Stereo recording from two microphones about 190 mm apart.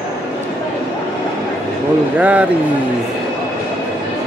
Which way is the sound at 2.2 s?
10° right (ahead or behind).